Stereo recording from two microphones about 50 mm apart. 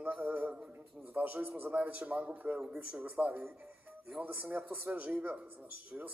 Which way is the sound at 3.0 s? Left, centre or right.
Right.